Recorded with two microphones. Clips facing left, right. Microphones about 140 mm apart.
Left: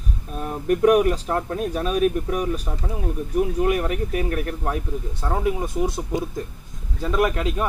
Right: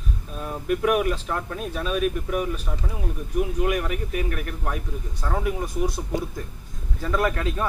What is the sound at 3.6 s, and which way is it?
Speech, 35° left (ahead or behind).